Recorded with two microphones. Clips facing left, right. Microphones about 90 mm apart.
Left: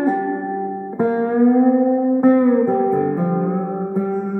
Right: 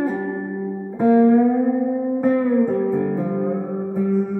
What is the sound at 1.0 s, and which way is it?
Music, 35° left (ahead or behind).